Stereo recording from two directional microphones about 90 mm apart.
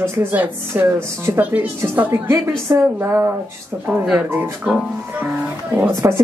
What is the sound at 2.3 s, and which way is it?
Speech, 35° right (ahead or behind).